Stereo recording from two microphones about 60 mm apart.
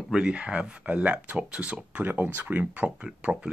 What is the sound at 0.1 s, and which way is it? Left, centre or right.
Speech, centre.